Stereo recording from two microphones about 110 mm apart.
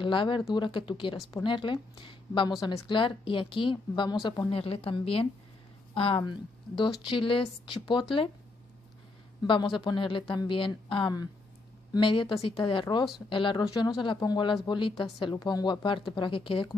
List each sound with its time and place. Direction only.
0.0 s a woman's voice: 50° left (ahead or behind)
4.5 s a woman's voice: 60° left (ahead or behind)
9.4 s a woman's voice: 45° left (ahead or behind)